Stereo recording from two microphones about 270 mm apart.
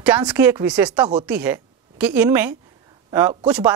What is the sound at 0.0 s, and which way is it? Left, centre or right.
A woman's voice, centre.